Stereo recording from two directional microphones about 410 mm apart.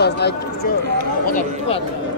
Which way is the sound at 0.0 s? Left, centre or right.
Left.